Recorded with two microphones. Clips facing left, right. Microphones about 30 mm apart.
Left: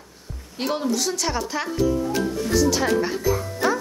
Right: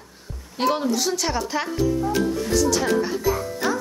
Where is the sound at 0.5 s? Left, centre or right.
Centre.